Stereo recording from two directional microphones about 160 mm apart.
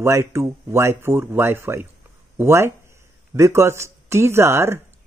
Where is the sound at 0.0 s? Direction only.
15° right (ahead or behind).